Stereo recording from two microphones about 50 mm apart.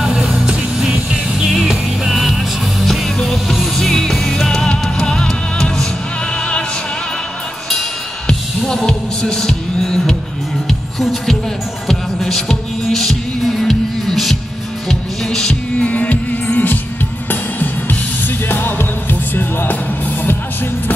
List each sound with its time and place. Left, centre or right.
0.0 s music: centre
2.0 s music: centre; by 6.6 s left
8.3 s music: centre
14.9 s music: centre
15.8 s music: left